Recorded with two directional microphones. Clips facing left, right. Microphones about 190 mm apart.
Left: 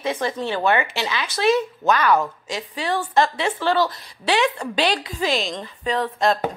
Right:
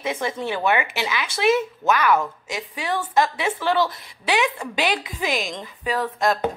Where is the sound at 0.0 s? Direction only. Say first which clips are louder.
Left 2 dB; 20° right (ahead or behind).